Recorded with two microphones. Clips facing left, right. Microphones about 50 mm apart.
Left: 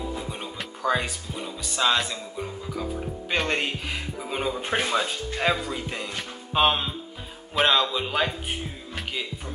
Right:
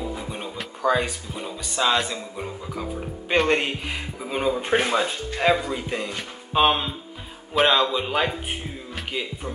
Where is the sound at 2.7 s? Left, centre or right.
Centre.